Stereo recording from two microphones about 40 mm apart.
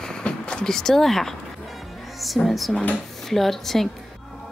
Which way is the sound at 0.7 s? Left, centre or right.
Centre.